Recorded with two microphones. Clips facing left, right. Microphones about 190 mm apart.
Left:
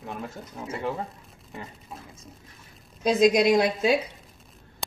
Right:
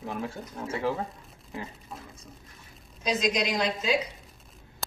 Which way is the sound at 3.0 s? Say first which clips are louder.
Left 8 dB; 55° left (ahead or behind).